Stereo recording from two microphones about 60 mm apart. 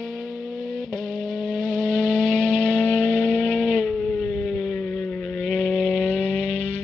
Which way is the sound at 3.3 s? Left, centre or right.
Centre.